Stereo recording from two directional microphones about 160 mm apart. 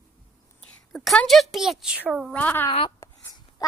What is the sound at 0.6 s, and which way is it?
A woman's voice, 5° left (ahead or behind).